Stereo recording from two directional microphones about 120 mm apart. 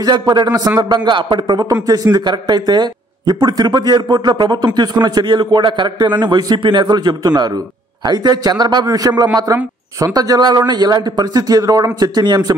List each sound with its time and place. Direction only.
0.0 s a man's voice: 35° right (ahead or behind)